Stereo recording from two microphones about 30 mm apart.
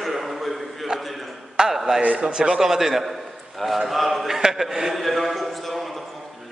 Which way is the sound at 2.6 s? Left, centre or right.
Centre.